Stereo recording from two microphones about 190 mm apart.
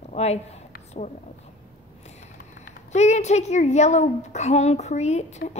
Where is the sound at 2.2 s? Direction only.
35° left (ahead or behind).